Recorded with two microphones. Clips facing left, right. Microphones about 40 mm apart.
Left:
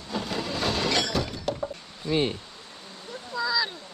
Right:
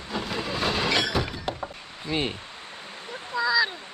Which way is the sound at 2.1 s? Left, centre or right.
Right.